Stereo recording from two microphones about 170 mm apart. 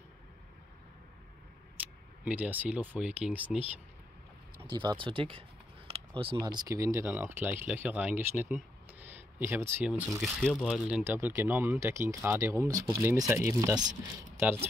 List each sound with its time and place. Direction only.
1.8 s speech: 10° right (ahead or behind)
4.6 s speech: 25° right (ahead or behind)
5.9 s a sound: 35° right (ahead or behind)
6.3 s speech: 20° right (ahead or behind)
10.4 s speech: 5° left (ahead or behind)
10.7 s speech: 5° right (ahead or behind)